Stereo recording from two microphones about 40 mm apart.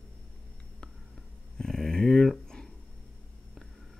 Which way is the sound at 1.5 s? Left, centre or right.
Centre.